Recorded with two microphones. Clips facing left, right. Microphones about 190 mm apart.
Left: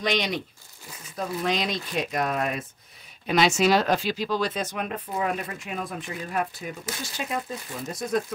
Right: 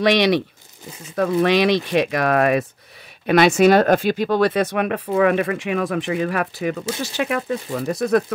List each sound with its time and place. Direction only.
0.0 s speech: 75° right (ahead or behind)
3.3 s speech: 60° right (ahead or behind)